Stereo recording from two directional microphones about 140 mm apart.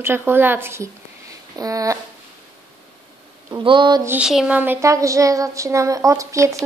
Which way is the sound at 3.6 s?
35° right (ahead or behind).